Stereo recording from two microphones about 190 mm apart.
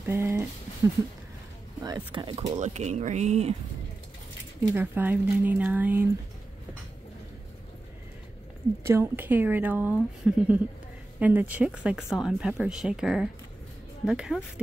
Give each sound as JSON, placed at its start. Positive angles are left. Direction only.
{"t": 0.0, "sound": "a sound", "side_deg": -15}
{"t": 1.8, "sound": "speech", "side_deg": -20}
{"t": 2.6, "sound": "speech", "side_deg": -35}
{"t": 4.7, "sound": "speech", "side_deg": -10}
{"t": 8.8, "sound": "speech", "side_deg": -15}